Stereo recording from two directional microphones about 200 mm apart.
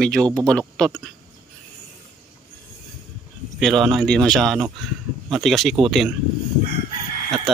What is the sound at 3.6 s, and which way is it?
A man's voice, centre (ahead or behind).